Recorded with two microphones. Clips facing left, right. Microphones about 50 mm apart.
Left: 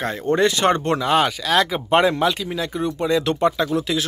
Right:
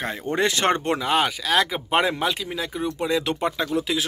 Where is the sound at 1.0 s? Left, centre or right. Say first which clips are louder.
Left 4 dB; centre.